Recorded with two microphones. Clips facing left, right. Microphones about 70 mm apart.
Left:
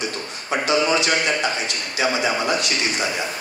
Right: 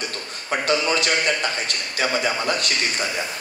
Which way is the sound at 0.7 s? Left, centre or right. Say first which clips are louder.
Left 2 dB; right.